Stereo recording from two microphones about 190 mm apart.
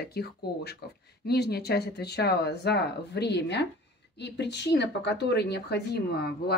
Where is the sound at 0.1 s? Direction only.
55° left (ahead or behind).